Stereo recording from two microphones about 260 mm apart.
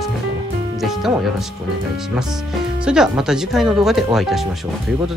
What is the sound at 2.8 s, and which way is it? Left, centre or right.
Speech, centre.